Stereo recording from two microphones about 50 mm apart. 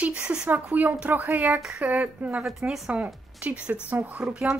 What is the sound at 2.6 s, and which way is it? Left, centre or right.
Speech, centre.